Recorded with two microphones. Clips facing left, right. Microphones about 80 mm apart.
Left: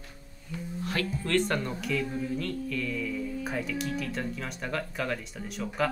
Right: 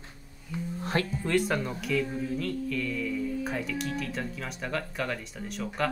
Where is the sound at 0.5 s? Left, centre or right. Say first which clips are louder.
Right 3 dB; right.